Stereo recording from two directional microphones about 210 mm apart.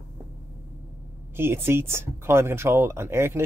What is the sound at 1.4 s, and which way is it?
Speech, 10° right (ahead or behind).